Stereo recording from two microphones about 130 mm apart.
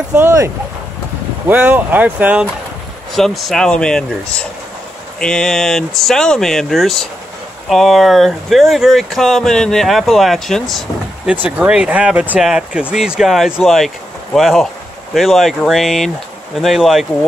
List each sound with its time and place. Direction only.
0.1 s speech: 20° right (ahead or behind)
1.5 s speech: 15° right (ahead or behind)
3.2 s speech: centre (ahead or behind)
11.4 s speech: 10° right (ahead or behind)